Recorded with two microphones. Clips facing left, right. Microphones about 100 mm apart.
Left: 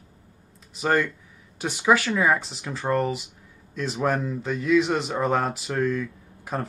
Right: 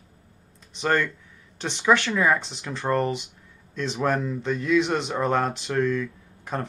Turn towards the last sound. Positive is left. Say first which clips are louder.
# even
turn(degrees=5)  # may be behind; listen again after turning